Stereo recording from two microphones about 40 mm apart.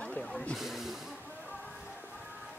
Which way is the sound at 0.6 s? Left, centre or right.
Centre.